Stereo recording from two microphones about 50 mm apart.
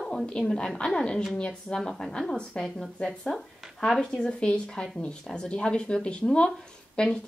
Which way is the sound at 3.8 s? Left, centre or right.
Centre.